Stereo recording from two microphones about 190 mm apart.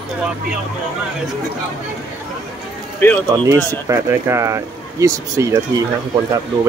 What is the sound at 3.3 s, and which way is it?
Speech, 15° right (ahead or behind).